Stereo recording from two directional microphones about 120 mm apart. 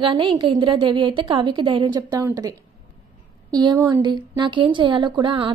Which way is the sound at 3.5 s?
35° right (ahead or behind).